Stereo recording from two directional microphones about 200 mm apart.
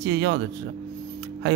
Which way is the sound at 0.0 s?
60° right (ahead or behind).